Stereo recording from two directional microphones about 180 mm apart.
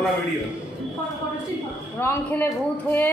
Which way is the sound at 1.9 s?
10° left (ahead or behind).